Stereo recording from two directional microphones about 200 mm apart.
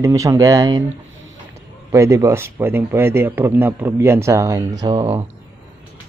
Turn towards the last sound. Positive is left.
turn(degrees=-25)  # may be behind; listen again after turning